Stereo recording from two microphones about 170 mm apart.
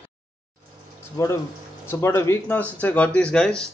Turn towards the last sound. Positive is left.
turn(degrees=5)  # may be behind; listen again after turning